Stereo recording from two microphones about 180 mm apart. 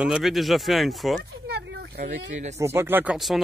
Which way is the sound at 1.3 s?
65° right (ahead or behind).